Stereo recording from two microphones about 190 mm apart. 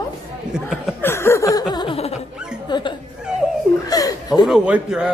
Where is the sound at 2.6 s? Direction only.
25° left (ahead or behind).